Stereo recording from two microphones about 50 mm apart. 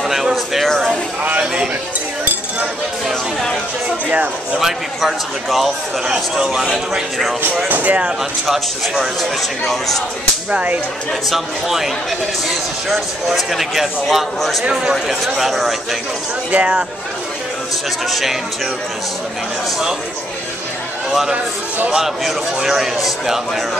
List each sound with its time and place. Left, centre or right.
0.0 s a sound: centre
0.7 s speech: centre
1.4 s speech: centre
4.6 s speech: centre
7.6 s speech: right
8.2 s speech: centre
10.5 s speech: right
11.2 s speech: centre
12.9 s speech: centre
14.7 s speech: centre
15.0 s speech: centre
16.5 s speech: right
18.1 s speech: centre
21.9 s speech: centre